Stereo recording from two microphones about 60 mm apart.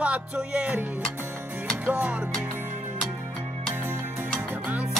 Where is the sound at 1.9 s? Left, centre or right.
Right.